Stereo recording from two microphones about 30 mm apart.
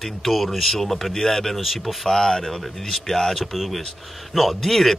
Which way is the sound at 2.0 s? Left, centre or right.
Left.